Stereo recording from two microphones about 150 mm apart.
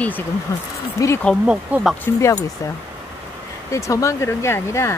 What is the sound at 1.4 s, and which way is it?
Speech, 5° right (ahead or behind).